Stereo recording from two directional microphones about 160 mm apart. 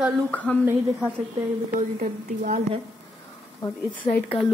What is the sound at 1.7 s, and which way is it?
Speech, 55° right (ahead or behind).